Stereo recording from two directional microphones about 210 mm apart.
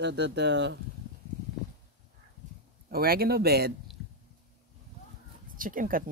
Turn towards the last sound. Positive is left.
turn(degrees=-40)  # may be behind; listen again after turning